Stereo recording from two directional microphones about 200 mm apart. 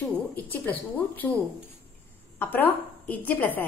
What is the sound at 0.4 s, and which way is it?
Speech, 10° left (ahead or behind).